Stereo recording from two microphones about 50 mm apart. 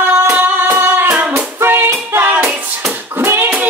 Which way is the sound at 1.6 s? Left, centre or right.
Right.